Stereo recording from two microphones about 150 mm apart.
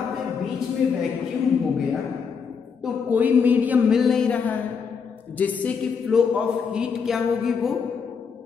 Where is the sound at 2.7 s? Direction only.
5° right (ahead or behind); by 5.7 s 10° left (ahead or behind).